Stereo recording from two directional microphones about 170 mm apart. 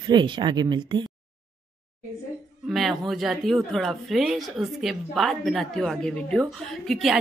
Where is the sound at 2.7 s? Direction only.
Centre (ahead or behind).